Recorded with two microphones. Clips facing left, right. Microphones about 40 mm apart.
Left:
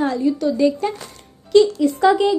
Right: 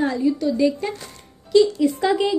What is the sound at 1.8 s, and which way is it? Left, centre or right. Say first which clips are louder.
Speech: left 4 dB; centre.